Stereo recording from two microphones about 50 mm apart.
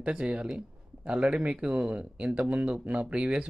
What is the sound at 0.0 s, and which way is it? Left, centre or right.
Speech, right.